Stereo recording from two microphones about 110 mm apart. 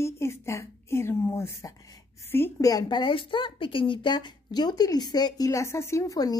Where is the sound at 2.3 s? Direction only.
20° left (ahead or behind).